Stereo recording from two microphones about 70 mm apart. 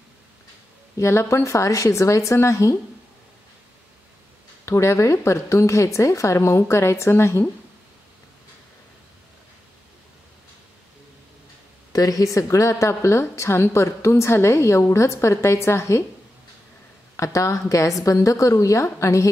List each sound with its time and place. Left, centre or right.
0.9 s a woman's voice: left
4.6 s a woman's voice: left
11.9 s a woman's voice: left
17.2 s a woman's voice: left